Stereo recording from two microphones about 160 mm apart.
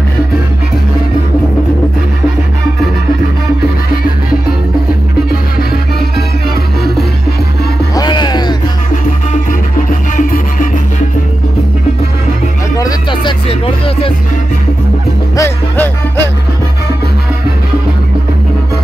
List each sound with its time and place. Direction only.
5.6 s music: 75° left (ahead or behind)
7.9 s music: 25° left (ahead or behind)
8.9 s music: 55° left (ahead or behind)
12.7 s music: 25° left (ahead or behind)
15.3 s music: 15° left (ahead or behind)